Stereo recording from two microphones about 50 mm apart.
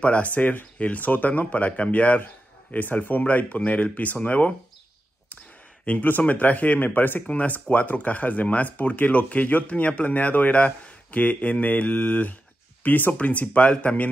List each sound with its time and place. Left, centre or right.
0.0 s speech: left
5.9 s speech: left